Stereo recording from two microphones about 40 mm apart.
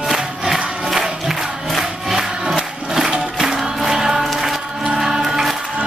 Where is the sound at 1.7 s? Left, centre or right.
Centre.